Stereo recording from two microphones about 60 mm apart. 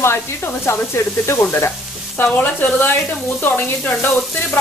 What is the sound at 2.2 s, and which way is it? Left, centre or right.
Speech, left.